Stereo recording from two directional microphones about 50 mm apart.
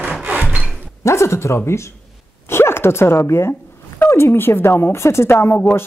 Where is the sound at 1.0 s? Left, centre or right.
Left.